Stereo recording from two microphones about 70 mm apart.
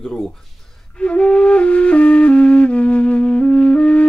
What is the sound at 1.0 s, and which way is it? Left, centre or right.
Flute, centre.